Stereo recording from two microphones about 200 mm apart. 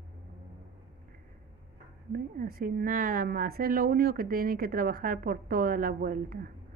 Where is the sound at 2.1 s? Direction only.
45° right (ahead or behind).